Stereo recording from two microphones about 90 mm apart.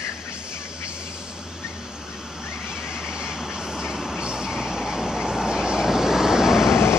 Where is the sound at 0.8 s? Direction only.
10° right (ahead or behind).